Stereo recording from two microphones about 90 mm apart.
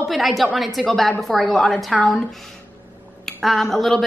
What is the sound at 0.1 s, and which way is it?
Speech, centre (ahead or behind).